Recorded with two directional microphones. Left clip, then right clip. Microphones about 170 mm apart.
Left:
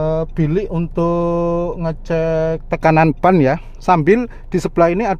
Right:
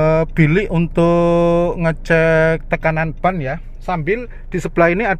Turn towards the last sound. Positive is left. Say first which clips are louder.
# even
turn(degrees=10)  # may be behind; listen again after turning